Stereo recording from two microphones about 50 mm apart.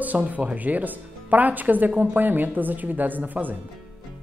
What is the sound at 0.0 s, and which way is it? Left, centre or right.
Speech, right.